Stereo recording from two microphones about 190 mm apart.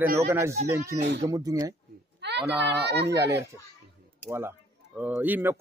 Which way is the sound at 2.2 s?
65° right (ahead or behind).